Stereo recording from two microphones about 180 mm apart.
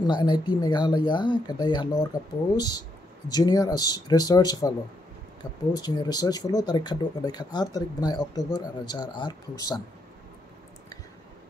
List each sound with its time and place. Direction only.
0.0 s speech: 25° left (ahead or behind)